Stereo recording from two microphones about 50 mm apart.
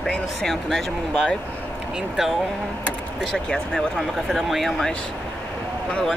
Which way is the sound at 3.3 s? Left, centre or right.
Centre.